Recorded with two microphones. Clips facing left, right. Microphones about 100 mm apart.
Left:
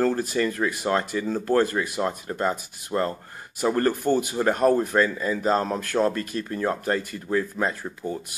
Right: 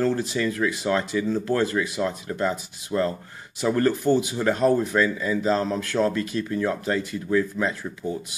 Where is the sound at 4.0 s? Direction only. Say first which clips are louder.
Right 1 dB; 50° left (ahead or behind).